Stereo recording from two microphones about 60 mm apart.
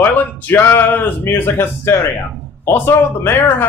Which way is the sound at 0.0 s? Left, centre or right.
Left.